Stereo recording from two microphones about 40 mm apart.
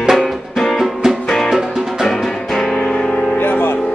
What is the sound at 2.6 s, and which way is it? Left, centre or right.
Music, centre.